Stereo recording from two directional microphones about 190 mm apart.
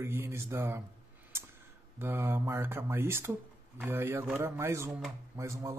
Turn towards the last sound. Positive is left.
turn(degrees=-15)  # may be behind; listen again after turning